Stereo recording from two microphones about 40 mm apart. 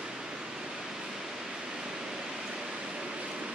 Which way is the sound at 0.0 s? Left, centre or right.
Centre.